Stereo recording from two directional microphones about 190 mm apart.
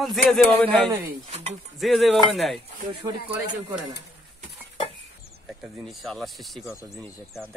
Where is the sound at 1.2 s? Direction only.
35° right (ahead or behind).